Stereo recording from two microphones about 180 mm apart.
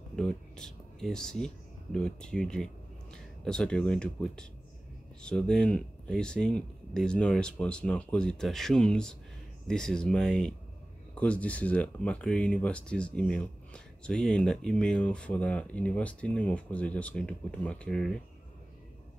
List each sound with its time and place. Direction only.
0.1 s speech: 5° left (ahead or behind)